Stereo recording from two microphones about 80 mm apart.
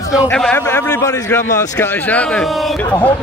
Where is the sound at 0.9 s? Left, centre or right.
Left.